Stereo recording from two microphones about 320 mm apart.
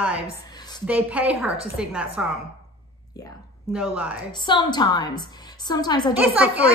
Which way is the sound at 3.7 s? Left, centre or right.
Centre.